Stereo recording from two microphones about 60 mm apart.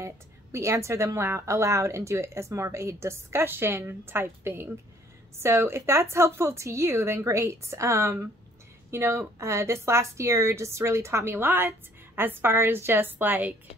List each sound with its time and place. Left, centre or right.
0.0 s a woman's voice: right